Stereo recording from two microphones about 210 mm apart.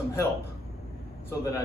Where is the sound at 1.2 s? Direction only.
15° left (ahead or behind).